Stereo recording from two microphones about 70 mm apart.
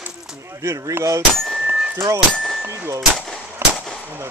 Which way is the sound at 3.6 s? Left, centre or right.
Right.